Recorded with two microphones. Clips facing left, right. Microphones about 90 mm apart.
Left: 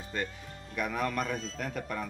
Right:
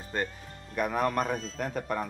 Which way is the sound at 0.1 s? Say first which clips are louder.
Right 3 dB; 40° right (ahead or behind).